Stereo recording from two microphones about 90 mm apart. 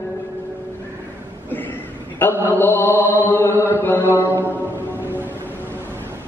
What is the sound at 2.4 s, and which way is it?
Chant, 25° left (ahead or behind).